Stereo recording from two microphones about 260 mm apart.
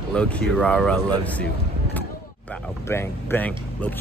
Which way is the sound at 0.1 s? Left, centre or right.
Centre.